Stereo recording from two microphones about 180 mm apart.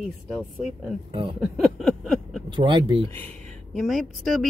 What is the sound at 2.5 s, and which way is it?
Speech, 25° right (ahead or behind).